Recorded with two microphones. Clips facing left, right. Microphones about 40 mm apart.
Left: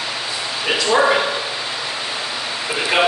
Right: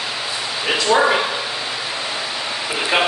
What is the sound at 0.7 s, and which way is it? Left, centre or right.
Speech, centre.